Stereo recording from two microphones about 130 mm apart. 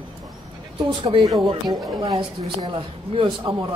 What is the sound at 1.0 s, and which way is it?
Speech, 30° right (ahead or behind).